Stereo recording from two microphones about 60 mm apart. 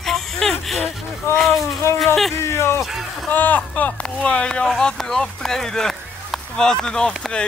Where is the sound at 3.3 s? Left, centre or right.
Left.